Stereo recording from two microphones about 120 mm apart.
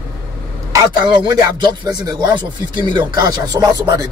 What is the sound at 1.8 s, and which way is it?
Speech, 35° right (ahead or behind).